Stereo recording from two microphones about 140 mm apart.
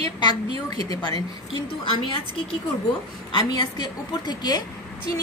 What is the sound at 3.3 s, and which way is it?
A woman's voice, 30° left (ahead or behind).